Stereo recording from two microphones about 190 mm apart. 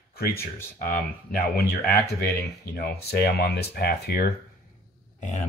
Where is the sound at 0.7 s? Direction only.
45° left (ahead or behind).